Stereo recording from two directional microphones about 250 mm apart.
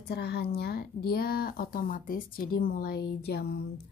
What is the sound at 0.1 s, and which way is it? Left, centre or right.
A woman's voice, left.